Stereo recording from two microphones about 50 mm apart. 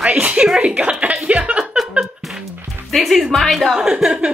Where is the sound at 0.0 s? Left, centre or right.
Right.